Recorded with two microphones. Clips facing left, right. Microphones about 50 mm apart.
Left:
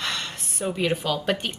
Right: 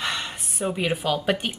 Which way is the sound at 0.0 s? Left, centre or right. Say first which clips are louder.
Right 1 dB; centre.